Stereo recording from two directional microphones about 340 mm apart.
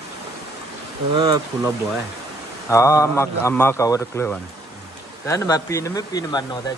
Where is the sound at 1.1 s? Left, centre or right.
Centre.